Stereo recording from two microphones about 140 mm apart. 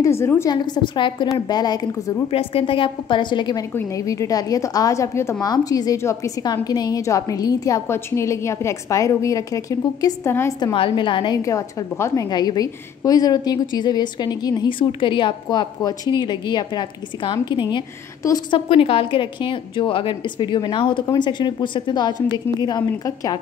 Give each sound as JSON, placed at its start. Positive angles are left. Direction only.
{"t": 0.0, "sound": "a woman's voice", "side_deg": 20}
{"t": 0.7, "sound": "a woman's voice", "side_deg": 35}
{"t": 2.3, "sound": "a woman's voice", "side_deg": 40}
{"t": 10.6, "sound": "a woman's voice", "side_deg": 35}
{"t": 18.7, "sound": "a woman's voice", "side_deg": 40}